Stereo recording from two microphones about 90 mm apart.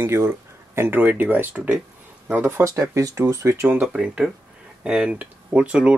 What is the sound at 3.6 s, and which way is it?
Speech, 15° right (ahead or behind).